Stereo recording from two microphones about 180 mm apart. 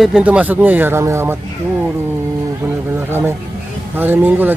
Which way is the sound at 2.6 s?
10° right (ahead or behind).